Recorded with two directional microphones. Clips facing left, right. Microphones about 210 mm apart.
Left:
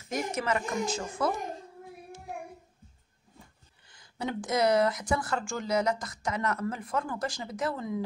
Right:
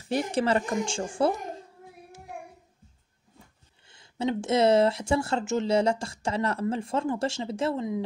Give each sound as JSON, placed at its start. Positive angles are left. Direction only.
{"t": 0.0, "sound": "speech", "side_deg": -30}
{"t": 3.8, "sound": "speech", "side_deg": -25}